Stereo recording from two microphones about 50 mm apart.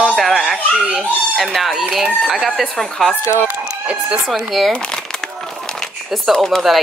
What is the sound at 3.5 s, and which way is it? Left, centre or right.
Chicken, right.